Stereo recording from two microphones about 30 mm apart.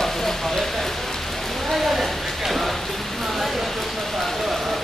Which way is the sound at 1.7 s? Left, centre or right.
Centre.